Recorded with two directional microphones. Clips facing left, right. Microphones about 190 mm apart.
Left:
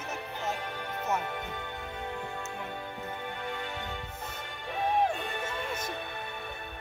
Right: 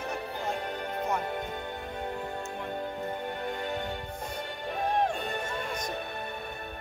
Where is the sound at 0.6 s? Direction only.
35° right (ahead or behind).